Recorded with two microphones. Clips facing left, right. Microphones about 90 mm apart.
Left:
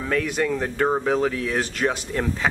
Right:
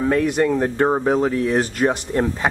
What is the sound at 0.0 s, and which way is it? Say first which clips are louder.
Speech: right 6 dB; 30° right (ahead or behind).